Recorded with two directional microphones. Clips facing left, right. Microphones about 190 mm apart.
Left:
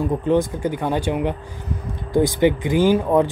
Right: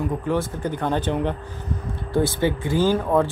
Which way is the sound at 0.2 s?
20° left (ahead or behind).